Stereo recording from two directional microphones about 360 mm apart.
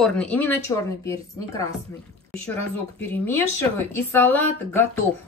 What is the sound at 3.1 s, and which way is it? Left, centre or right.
Speech, centre.